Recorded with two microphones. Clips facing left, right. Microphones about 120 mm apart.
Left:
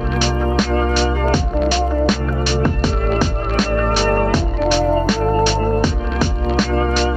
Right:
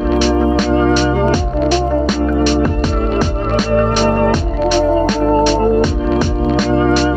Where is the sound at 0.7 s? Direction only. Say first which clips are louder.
Right 5 dB; 30° right (ahead or behind).